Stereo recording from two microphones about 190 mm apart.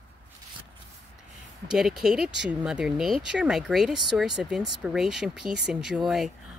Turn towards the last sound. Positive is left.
turn(degrees=0)  # may be behind; listen again after turning